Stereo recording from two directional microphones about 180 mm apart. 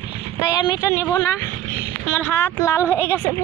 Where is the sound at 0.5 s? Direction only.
20° left (ahead or behind).